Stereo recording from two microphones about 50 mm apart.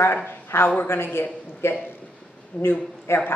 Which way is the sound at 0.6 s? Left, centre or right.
Left.